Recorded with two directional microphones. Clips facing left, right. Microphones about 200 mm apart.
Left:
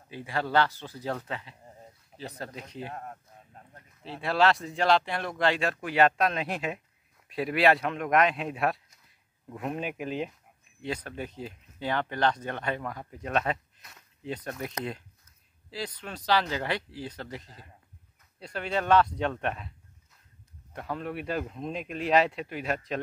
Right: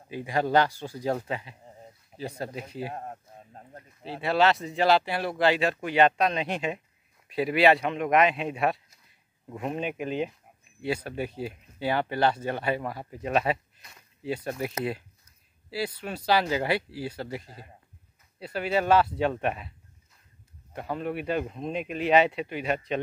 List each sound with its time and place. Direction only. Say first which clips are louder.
0.1 s speech: right 4 dB; 15° right (ahead or behind)
2.9 s a sound: right 3 dB; 30° right (ahead or behind)
4.2 s speech: right 1 dB; centre (ahead or behind)
20.7 s speech: right 3 dB; 5° right (ahead or behind)